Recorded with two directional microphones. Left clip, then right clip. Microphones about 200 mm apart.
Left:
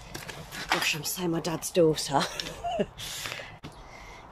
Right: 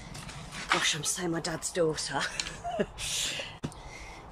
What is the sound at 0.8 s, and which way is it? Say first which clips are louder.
Speech: left 1 dB; 5° left (ahead or behind).